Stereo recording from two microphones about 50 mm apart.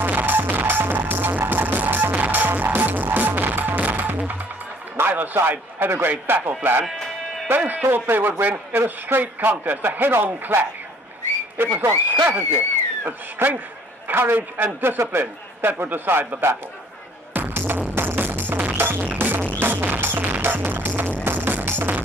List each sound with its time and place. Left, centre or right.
0.0 s music: right
4.9 s a man's voice: right
7.6 s a man's voice: right
7.9 s a man's voice: right
17.3 s music: right